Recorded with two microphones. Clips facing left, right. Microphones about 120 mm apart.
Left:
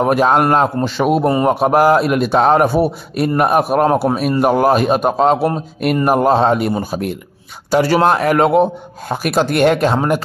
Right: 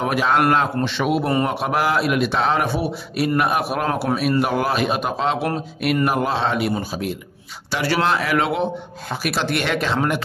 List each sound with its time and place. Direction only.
0.0 s a man's voice: 45° left (ahead or behind)